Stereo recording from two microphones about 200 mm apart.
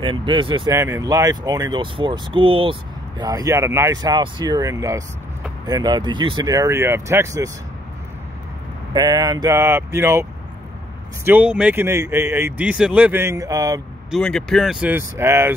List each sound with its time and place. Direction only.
0.0 s speech: 25° right (ahead or behind)
0.7 s speech: 15° right (ahead or behind)
8.9 s speech: 20° right (ahead or behind)
11.2 s speech: 5° right (ahead or behind)
14.1 s speech: centre (ahead or behind)